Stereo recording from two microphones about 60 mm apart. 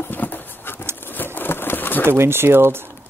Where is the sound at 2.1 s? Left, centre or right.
Right.